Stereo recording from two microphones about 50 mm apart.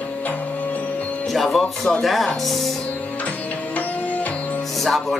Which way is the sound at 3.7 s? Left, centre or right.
Left.